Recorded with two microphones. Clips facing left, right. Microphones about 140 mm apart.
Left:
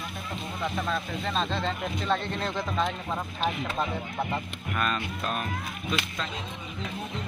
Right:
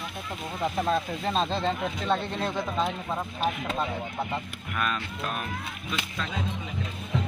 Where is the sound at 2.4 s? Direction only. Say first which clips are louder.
Right 1 dB; 5° right (ahead or behind).